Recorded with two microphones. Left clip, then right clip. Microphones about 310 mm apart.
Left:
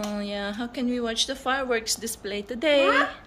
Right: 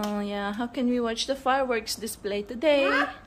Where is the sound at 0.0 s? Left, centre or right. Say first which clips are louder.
Even; centre.